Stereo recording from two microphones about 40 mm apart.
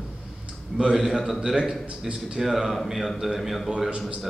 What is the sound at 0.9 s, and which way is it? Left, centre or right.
A man's voice, centre.